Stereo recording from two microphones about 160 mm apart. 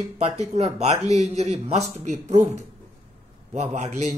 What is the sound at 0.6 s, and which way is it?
Speech, 40° right (ahead or behind).